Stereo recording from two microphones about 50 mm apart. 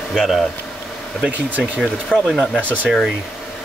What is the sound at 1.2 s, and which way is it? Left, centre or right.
Speech, right.